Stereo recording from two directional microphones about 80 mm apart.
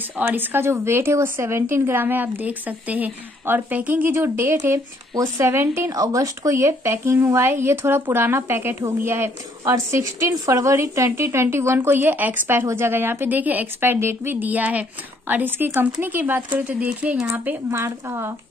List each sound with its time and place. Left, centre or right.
0.2 s a woman's voice: right
5.9 s a woman's voice: right; by 17.3 s centre
17.3 s speech: right